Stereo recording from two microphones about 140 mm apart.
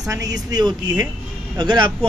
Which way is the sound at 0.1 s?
25° right (ahead or behind).